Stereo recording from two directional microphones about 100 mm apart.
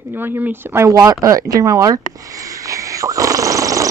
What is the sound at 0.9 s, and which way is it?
Speech, 35° right (ahead or behind).